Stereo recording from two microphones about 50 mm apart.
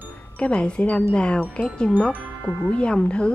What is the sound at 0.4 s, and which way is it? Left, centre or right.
A woman's voice, left.